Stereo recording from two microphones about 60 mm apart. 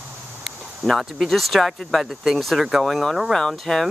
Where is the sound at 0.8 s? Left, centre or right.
Centre.